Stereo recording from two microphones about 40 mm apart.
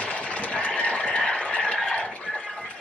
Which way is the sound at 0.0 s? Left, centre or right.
Left.